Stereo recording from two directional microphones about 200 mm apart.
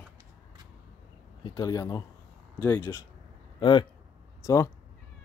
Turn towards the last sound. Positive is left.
turn(degrees=15)  # may be behind; listen again after turning